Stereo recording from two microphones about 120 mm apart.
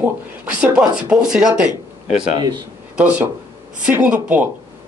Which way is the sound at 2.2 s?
35° right (ahead or behind).